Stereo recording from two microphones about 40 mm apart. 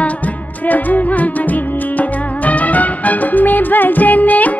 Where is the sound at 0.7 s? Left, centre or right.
Left.